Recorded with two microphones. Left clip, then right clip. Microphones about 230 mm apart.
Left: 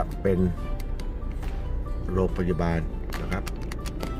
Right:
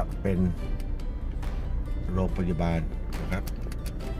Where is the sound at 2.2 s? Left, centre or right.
Centre.